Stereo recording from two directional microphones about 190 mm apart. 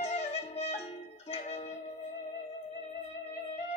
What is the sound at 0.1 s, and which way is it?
Music, 35° left (ahead or behind).